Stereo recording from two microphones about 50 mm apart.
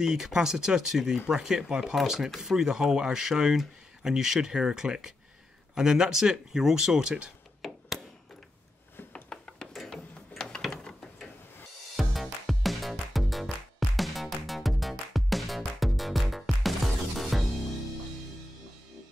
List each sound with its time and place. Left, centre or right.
0.0 s speech: centre
9.1 s a sound: centre
9.8 s gears: centre
12.0 s music: centre